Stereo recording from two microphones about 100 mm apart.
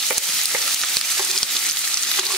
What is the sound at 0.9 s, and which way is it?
Frying, 5° left (ahead or behind).